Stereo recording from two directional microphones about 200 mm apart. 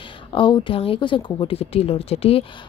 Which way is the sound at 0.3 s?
25° left (ahead or behind).